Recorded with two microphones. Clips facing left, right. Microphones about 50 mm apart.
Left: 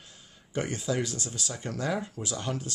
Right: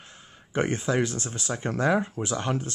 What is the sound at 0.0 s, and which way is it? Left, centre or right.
Speech, right.